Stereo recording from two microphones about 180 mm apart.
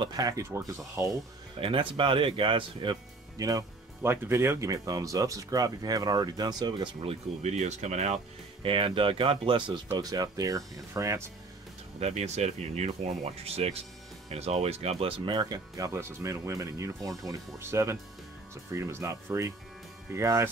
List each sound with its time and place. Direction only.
0.0 s speech: 20° right (ahead or behind)
1.6 s speech: 30° right (ahead or behind)
8.6 s speech: 30° right (ahead or behind)
12.0 s speech: 35° right (ahead or behind); by 20.4 s 15° right (ahead or behind)